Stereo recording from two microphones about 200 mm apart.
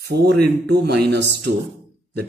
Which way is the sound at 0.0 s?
55° right (ahead or behind).